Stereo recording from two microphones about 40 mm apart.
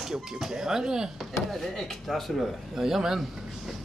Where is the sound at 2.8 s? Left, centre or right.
Centre.